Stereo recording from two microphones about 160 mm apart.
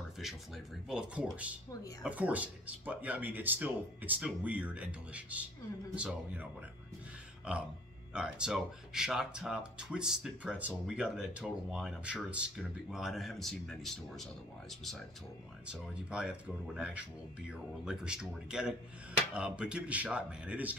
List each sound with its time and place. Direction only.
0.2 s speech: centre (ahead or behind)
8.1 s speech: 5° right (ahead or behind)